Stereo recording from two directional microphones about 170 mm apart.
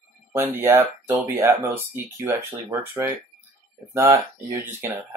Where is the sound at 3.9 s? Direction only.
15° right (ahead or behind).